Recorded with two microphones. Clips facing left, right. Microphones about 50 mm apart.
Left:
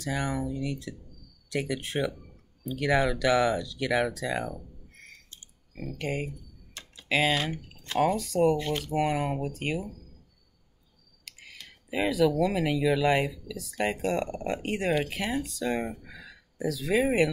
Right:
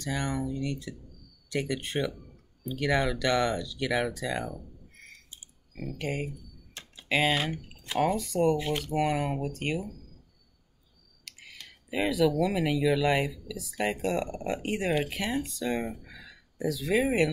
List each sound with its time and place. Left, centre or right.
0.0 s speech: centre
6.7 s tick-tock: right
7.1 s speech: centre
7.6 s a sound: centre
8.0 s speech: centre
11.2 s speech: centre